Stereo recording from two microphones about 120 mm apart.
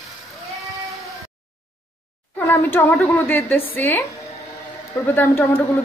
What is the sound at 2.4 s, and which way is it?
A woman's voice, 20° left (ahead or behind).